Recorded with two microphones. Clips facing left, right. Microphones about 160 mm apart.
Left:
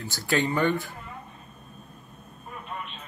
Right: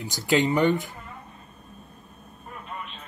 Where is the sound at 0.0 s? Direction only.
20° right (ahead or behind).